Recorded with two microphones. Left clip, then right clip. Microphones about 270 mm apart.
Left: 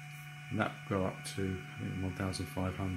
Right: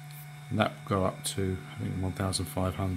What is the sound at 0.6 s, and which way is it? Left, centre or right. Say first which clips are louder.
Speech: right 6 dB; right.